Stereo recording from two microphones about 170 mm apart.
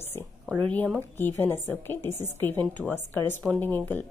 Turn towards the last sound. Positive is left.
turn(degrees=10)  # may be behind; listen again after turning